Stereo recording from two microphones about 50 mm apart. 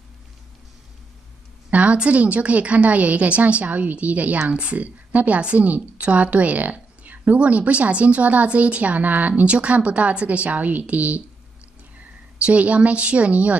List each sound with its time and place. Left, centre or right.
1.7 s a woman's voice: right